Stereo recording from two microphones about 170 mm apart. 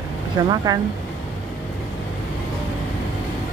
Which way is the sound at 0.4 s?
20° right (ahead or behind).